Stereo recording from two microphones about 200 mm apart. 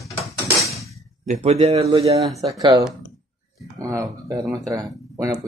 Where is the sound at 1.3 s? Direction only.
35° right (ahead or behind).